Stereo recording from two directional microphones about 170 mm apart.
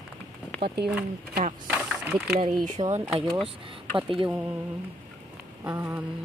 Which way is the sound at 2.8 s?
30° right (ahead or behind).